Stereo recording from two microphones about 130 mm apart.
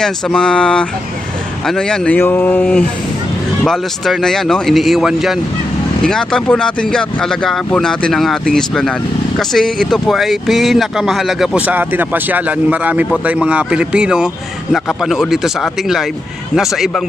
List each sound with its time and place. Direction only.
0.0 s speech: 5° left (ahead or behind)
2.1 s speech: 15° left (ahead or behind)
3.6 s speech: centre (ahead or behind)